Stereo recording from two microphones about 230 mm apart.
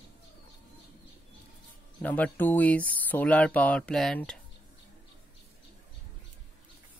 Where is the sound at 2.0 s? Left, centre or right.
Centre.